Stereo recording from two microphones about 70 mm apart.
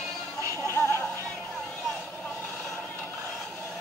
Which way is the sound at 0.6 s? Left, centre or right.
Left.